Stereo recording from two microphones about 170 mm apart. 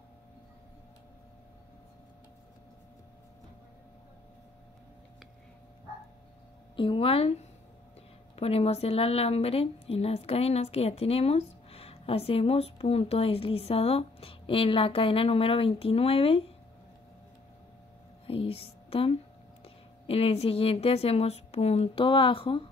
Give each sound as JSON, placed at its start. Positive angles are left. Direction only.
{"t": 6.8, "sound": "speech", "side_deg": 30}
{"t": 18.2, "sound": "a woman's voice", "side_deg": 35}